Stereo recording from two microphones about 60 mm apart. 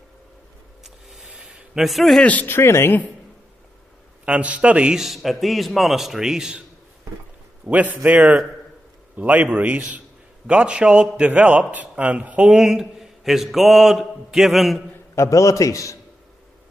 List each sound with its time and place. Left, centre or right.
0.8 s rub: centre
1.4 s a sound: right
1.8 s mantra: centre
2.4 s a man's voice: left
4.3 s a man's voice: right
4.9 s mantra: centre
7.6 s a man's voice: right
12.5 s mantra: centre
15.1 s a man's voice: left